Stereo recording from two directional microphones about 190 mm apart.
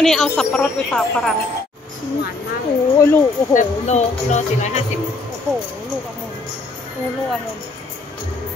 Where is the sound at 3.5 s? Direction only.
35° left (ahead or behind).